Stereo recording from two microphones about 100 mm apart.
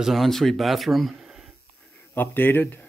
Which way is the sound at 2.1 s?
20° left (ahead or behind).